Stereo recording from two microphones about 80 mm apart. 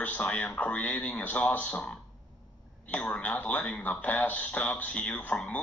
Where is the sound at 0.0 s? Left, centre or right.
Centre.